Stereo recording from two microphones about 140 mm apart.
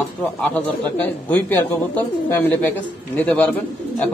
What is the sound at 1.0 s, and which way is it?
Speech, 15° left (ahead or behind).